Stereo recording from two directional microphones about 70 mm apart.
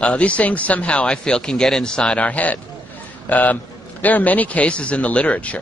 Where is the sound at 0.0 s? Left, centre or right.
Centre.